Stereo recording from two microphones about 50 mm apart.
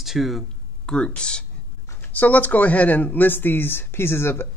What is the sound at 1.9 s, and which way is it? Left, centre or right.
Speech, left.